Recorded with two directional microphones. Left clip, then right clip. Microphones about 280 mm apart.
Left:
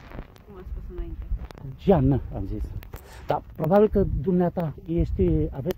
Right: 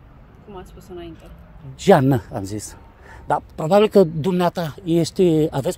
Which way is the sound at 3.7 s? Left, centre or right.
Centre.